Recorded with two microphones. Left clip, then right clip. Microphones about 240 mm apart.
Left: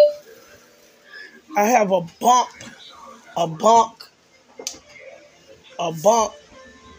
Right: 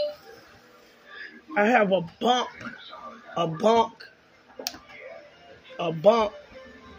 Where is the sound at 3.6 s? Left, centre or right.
Left.